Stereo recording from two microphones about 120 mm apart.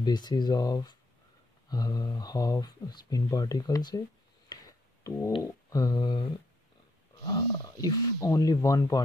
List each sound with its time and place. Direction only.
0.0 s speech: 35° left (ahead or behind)
4.5 s a sound: 35° left (ahead or behind)
5.4 s speech: 30° left (ahead or behind)
7.2 s speech: 30° left (ahead or behind)